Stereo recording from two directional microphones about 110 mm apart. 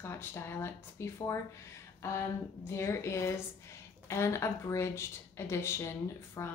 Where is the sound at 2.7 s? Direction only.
25° left (ahead or behind).